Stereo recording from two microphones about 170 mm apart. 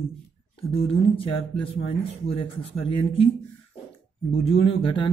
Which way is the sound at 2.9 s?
30° left (ahead or behind).